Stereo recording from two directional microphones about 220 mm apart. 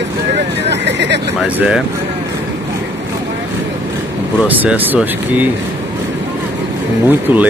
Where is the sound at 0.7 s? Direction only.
50° right (ahead or behind).